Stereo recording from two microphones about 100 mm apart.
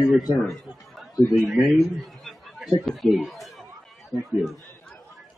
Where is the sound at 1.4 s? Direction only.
Centre (ahead or behind).